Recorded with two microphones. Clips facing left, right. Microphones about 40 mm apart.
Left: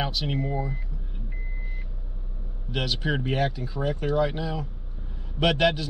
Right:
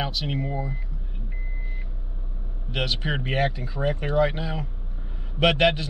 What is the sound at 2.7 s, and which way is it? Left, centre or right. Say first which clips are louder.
A man's voice: even; centre.